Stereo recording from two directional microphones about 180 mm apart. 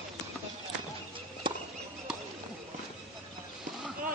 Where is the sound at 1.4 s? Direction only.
25° right (ahead or behind).